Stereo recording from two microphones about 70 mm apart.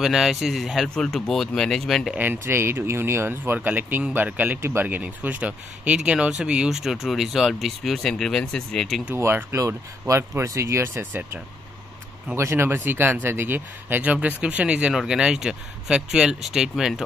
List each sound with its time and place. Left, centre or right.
0.0 s speech: centre
0.8 s speech: centre
2.1 s speech: right
4.8 s speech: right; by 9.0 s centre
9.1 s speech: right
12.4 s speech: right; by 17.0 s centre